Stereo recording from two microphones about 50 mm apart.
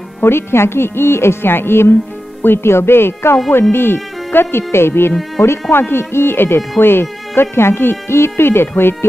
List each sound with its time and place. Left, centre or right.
0.2 s a woman's voice: left